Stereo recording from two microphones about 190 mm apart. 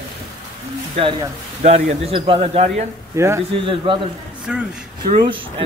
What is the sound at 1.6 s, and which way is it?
Speech, 35° right (ahead or behind).